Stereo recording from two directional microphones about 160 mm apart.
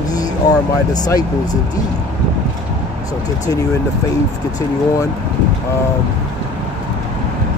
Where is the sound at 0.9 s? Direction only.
25° left (ahead or behind).